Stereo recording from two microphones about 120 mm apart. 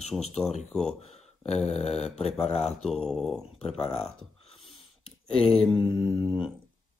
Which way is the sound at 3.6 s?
55° left (ahead or behind).